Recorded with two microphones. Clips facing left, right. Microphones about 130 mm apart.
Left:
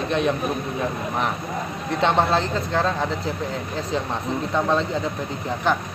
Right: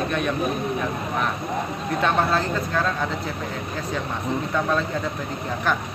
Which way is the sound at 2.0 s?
25° left (ahead or behind).